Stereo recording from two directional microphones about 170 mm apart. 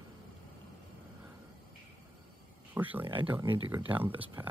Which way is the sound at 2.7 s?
10° right (ahead or behind).